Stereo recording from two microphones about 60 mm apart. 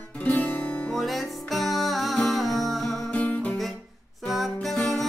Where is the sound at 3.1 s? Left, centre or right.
Left.